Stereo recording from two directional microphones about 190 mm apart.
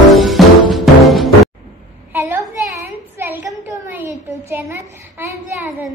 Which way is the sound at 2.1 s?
10° right (ahead or behind).